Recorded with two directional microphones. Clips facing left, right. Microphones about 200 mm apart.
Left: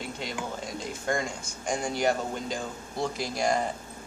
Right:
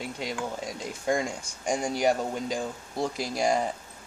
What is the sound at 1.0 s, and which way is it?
Speech, 10° right (ahead or behind).